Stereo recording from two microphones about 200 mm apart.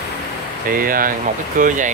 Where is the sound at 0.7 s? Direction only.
45° right (ahead or behind).